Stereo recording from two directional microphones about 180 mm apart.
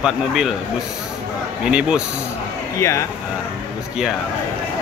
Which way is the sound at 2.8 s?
15° left (ahead or behind).